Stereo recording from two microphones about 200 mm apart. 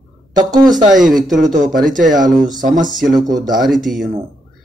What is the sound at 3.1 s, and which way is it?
Speech, 20° right (ahead or behind).